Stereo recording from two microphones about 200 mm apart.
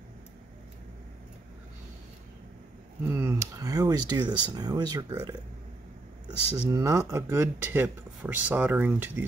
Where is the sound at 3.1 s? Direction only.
15° right (ahead or behind).